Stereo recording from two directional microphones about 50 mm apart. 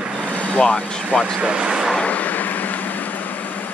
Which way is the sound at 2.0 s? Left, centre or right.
Left.